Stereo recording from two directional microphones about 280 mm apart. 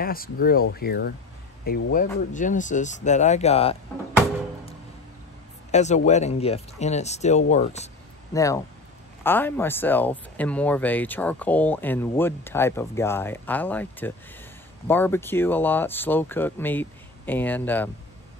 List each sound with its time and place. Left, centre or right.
0.0 s speech: left
5.7 s speech: left
8.3 s speech: centre